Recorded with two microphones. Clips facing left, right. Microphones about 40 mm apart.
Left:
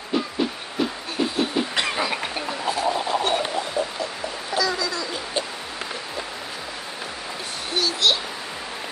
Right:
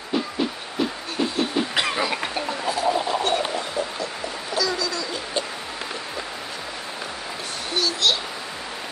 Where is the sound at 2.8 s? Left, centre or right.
Centre.